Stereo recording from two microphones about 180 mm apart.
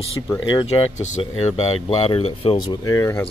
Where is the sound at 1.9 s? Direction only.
30° left (ahead or behind).